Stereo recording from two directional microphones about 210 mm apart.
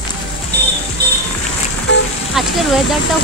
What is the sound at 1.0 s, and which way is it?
Music, 50° right (ahead or behind).